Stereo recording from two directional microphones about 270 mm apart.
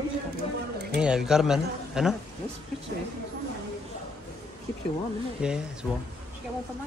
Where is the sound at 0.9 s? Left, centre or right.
Centre.